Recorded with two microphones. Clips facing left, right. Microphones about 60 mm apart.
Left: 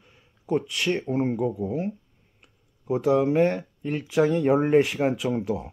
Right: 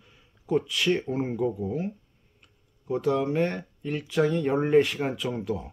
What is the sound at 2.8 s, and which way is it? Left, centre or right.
Speech, centre.